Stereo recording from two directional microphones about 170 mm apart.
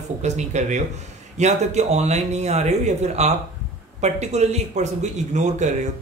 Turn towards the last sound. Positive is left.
turn(degrees=-45)  # may be behind; listen again after turning